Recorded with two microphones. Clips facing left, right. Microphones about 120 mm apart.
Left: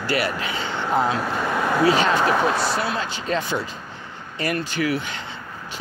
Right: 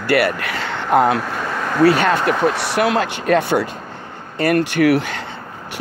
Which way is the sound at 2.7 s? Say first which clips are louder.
Right 7 dB; 80° right.